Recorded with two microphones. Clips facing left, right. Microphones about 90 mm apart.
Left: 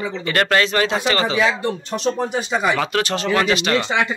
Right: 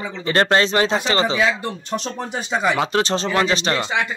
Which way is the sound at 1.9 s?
Centre (ahead or behind).